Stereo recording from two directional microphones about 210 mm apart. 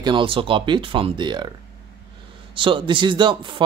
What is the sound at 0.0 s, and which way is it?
Speech, 25° right (ahead or behind).